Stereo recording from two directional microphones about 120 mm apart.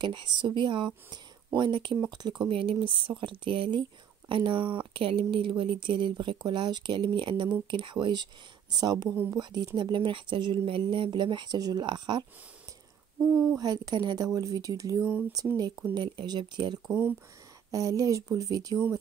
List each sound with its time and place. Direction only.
0.0 s speech: 40° right (ahead or behind)
13.6 s speech: 35° right (ahead or behind)
15.0 s speech: 10° right (ahead or behind)
15.9 s speech: 35° right (ahead or behind)